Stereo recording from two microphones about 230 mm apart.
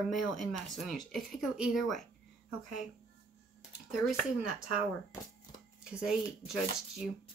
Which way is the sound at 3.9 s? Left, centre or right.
Centre.